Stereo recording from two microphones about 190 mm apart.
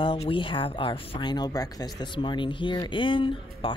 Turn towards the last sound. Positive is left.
turn(degrees=25)  # may be behind; listen again after turning